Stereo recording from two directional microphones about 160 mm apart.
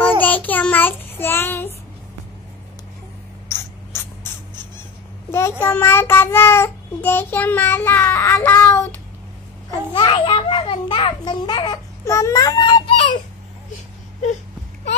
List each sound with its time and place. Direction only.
0.2 s child singing: 10° left (ahead or behind)
3.4 s a sound: 15° left (ahead or behind)
5.3 s child singing: 15° left (ahead or behind)
9.7 s a child's voice: 30° left (ahead or behind)